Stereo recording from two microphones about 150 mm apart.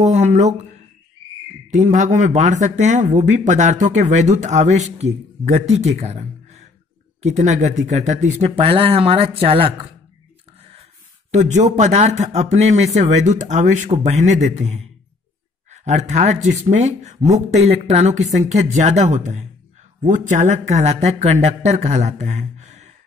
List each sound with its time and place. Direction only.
0.0 s speech: 50° right (ahead or behind)
1.7 s speech: 55° right (ahead or behind); by 9.8 s 40° right (ahead or behind)
11.3 s speech: 50° right (ahead or behind)